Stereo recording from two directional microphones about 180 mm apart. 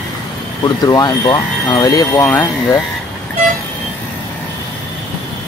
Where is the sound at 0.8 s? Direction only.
20° left (ahead or behind).